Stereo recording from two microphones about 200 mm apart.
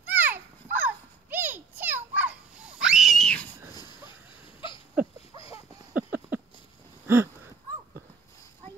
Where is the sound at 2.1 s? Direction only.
5° right (ahead or behind).